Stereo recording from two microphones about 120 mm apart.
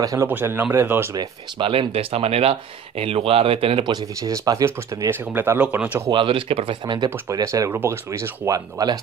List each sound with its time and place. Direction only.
0.0 s speech: 25° right (ahead or behind)
0.3 s speech: 15° right (ahead or behind)
1.6 s speech: 50° right (ahead or behind)
3.9 s speech: 30° right (ahead or behind)
5.3 s speech: 15° right (ahead or behind)
6.1 s speech: 45° right (ahead or behind)
7.2 s speech: 25° right (ahead or behind)